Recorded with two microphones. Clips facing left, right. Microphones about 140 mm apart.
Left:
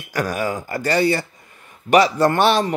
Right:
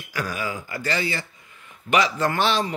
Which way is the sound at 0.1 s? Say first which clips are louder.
Left 6 dB; 50° left (ahead or behind).